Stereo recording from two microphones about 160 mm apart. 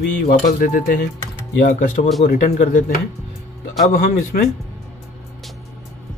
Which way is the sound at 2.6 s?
55° left (ahead or behind).